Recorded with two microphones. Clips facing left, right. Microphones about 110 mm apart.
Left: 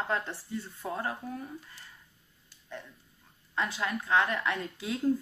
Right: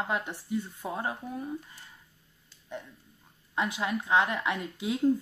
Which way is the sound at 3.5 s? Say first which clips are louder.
Right 2 dB; 15° right (ahead or behind).